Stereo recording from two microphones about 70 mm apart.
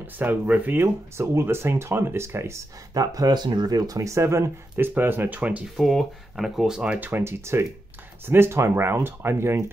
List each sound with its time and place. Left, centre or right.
0.0 s speech: right
2.9 s speech: right
4.1 s speech: right
5.8 s speech: centre
6.8 s speech: centre
7.1 s speech: right